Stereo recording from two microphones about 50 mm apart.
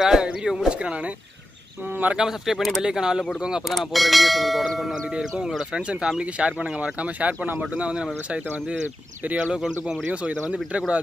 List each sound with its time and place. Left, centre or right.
0.0 s speech: centre
2.1 s speech: centre
3.7 s speech: centre
5.9 s speech: centre
9.4 s speech: centre